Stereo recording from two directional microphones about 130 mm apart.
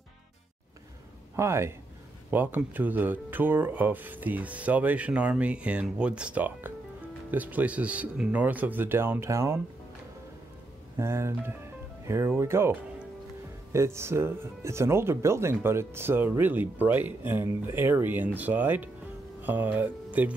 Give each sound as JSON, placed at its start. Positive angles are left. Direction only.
{"t": 1.3, "sound": "speech", "side_deg": -20}
{"t": 11.0, "sound": "speech", "side_deg": -20}